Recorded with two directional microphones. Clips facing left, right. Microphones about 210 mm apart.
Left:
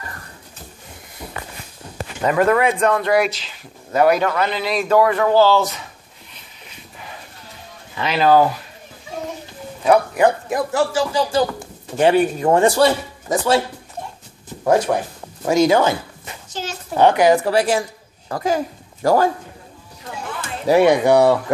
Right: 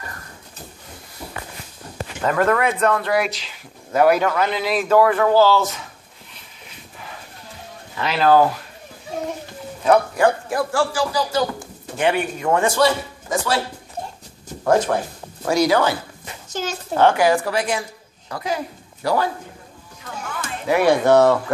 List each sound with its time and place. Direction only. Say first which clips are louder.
2.2 s speech: left 3 dB; 10° left (ahead or behind)
8.0 s speech: left 1 dB; 5° left (ahead or behind)
9.8 s a man's voice: left 1 dB; 20° left (ahead or behind)
14.6 s a man's voice: left 1 dB; 15° left (ahead or behind)
17.5 s a man's voice: left 5 dB; 40° left (ahead or behind)
20.3 s a sound: left 5 dB; 30° left (ahead or behind)
20.8 s speech: right 1 dB; 15° left (ahead or behind)